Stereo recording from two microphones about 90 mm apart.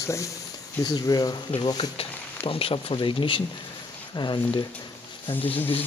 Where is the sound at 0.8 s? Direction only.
50° left (ahead or behind).